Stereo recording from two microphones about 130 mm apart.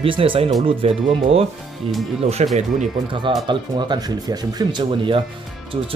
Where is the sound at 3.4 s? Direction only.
35° right (ahead or behind).